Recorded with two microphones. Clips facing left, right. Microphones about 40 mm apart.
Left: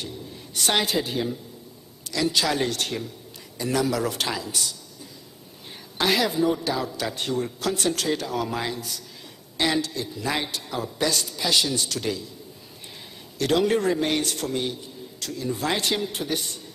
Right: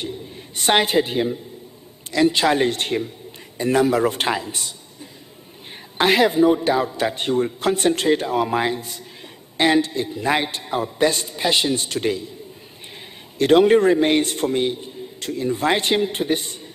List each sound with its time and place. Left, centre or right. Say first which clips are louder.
0.0 s a sound: right 5 dB; right
2.0 s a man's voice: right 7 dB; right
5.9 s a man's voice: right 6 dB; right
13.4 s a man's voice: right 8 dB; right